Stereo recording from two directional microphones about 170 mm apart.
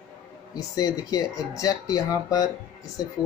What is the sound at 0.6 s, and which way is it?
Speech, 20° left (ahead or behind).